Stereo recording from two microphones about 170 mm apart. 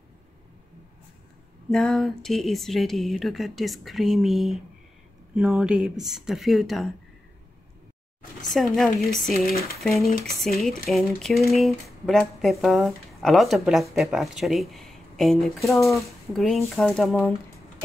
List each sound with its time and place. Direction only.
1.7 s speech: 5° left (ahead or behind)
8.7 s speech: 5° left (ahead or behind)